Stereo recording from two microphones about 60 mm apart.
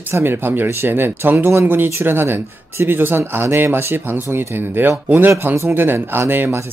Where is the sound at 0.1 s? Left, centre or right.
Right.